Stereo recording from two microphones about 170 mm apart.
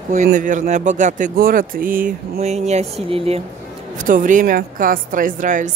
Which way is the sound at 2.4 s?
40° right (ahead or behind).